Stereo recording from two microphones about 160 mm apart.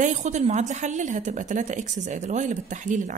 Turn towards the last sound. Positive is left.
turn(degrees=-50)  # may be behind; listen again after turning